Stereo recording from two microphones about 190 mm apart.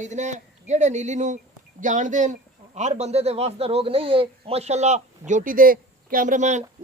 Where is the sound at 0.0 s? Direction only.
40° right (ahead or behind).